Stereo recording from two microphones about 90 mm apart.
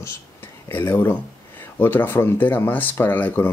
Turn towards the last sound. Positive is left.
turn(degrees=20)  # may be behind; listen again after turning